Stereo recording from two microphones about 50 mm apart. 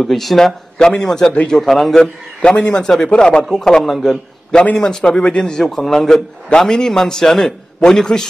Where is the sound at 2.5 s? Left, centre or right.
Left.